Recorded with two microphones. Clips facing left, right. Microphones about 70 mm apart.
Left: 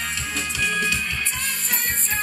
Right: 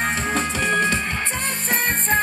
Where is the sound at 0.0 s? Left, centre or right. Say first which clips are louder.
Right 7 dB; right.